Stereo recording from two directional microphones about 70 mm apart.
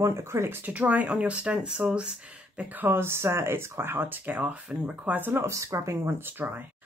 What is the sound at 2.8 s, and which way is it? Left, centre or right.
Speech, right.